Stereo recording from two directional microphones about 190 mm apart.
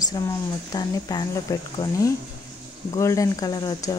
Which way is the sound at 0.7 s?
20° left (ahead or behind).